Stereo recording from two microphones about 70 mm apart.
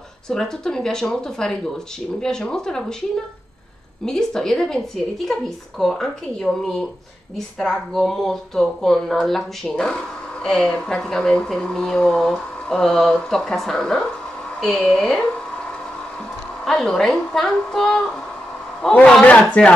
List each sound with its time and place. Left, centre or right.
0.3 s speech: centre
4.0 s a woman's voice: centre
16.6 s a woman's voice: centre
19.2 s speech: centre